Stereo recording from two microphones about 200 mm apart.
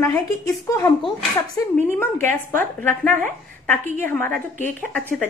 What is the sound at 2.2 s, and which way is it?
A woman's voice, 10° left (ahead or behind).